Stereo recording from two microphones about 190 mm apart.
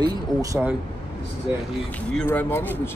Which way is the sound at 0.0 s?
20° right (ahead or behind).